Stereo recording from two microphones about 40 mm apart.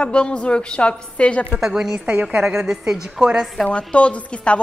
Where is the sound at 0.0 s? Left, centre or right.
Left.